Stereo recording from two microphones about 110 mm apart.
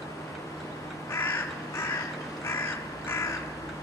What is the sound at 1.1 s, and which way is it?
Crow, 20° left (ahead or behind).